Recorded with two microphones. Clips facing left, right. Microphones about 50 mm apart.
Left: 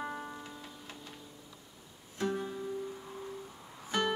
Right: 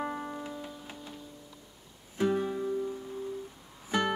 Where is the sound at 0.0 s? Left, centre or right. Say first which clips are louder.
Right 5 dB; centre.